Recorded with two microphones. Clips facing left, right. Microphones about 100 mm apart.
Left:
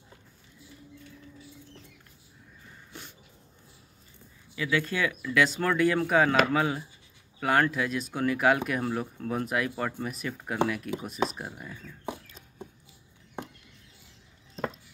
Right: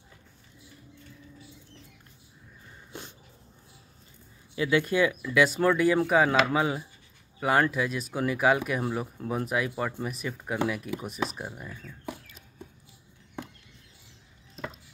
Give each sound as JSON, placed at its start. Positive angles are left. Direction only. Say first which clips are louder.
{"t": 2.9, "sound": "dog", "louder": "right 4 dB", "side_deg": -25}
{"t": 4.6, "sound": "speech", "louder": "right 4 dB", "side_deg": -20}